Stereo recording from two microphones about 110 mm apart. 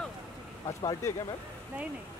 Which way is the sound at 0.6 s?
30° left (ahead or behind).